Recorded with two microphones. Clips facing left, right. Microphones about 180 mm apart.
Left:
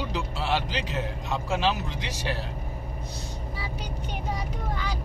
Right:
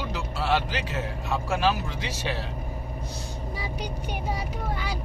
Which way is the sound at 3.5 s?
15° right (ahead or behind).